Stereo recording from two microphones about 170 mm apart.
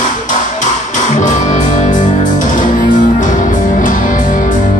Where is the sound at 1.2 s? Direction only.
45° left (ahead or behind).